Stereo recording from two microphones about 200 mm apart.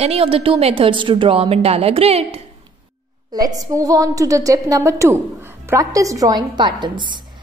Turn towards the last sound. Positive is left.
turn(degrees=-25)  # may be behind; listen again after turning